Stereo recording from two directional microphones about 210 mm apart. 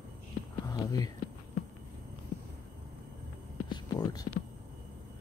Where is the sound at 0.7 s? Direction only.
20° left (ahead or behind).